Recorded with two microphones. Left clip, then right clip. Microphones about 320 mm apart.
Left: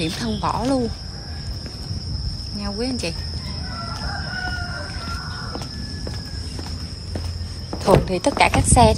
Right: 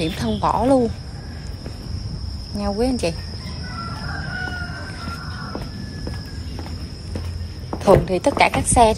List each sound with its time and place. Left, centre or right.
0.0 s speech: centre
2.6 s speech: centre
7.8 s speech: centre